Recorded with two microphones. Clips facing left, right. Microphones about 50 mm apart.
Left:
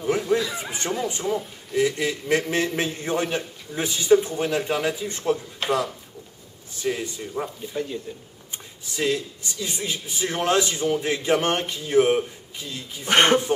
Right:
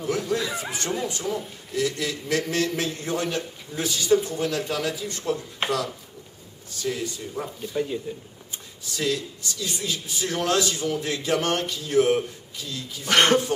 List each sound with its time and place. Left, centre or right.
0.0 s a man's voice: centre
5.6 s speech: right
6.7 s a man's voice: left
7.7 s speech: centre
8.9 s a man's voice: left